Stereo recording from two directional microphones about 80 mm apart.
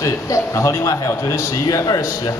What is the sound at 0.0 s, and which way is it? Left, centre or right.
A man's voice, left.